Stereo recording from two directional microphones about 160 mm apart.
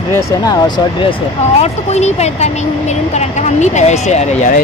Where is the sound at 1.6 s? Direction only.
45° left (ahead or behind).